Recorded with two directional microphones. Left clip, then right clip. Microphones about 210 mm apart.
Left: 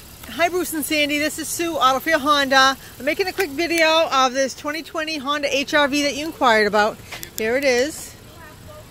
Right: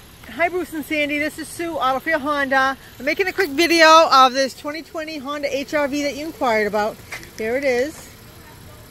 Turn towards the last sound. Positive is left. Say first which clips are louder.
# left 1 dB
turn(degrees=0)  # may be behind; listen again after turning